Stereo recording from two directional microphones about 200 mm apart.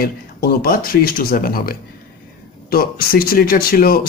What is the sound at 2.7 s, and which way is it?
Speech, 50° left (ahead or behind).